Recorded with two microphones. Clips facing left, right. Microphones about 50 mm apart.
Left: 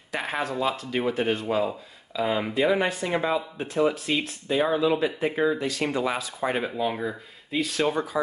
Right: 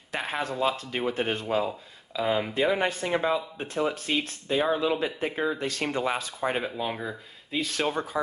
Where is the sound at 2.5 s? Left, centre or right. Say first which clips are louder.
Left 2 dB; left.